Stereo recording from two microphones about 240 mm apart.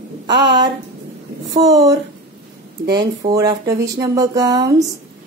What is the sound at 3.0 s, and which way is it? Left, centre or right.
Speech, centre.